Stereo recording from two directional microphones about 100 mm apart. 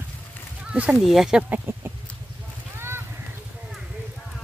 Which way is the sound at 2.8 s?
25° right (ahead or behind).